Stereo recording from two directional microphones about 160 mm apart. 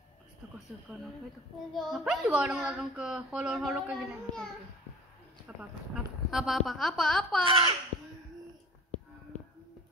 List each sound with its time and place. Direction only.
1.7 s a woman's voice: centre (ahead or behind)
3.7 s child singing: 10° right (ahead or behind)
5.6 s a woman's voice: 5° right (ahead or behind)
7.4 s speech: 35° right (ahead or behind)